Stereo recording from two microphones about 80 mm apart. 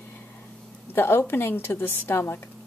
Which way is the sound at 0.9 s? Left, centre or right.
Left.